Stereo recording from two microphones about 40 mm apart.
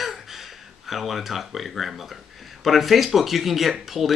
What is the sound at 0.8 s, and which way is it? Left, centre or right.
Speech, centre.